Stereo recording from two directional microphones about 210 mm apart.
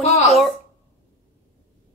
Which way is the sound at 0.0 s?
30° left (ahead or behind).